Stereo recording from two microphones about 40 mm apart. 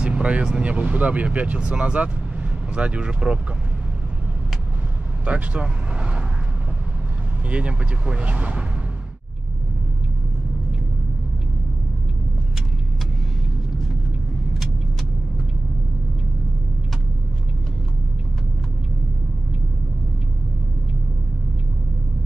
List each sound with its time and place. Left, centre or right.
0.0 s vehicle: right
0.5 s speech: right
1.6 s speech: right
5.2 s vehicle: right
7.4 s speech: right